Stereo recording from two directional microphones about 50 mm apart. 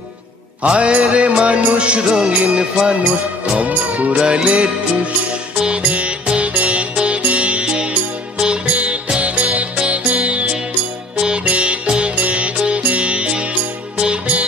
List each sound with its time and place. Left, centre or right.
0.6 s music: right
3.5 s speech: right
4.2 s music: centre